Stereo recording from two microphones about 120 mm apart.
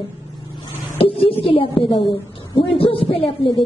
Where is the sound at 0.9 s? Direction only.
50° left (ahead or behind).